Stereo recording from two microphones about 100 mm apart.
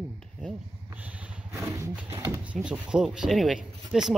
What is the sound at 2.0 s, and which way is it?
Speech, 20° right (ahead or behind).